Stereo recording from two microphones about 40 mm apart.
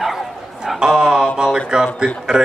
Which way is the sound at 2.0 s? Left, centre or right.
Centre.